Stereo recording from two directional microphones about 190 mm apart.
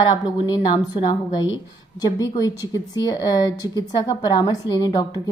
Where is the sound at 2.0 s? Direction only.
20° left (ahead or behind).